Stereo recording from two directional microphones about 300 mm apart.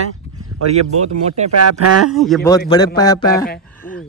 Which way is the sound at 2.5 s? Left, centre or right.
Centre.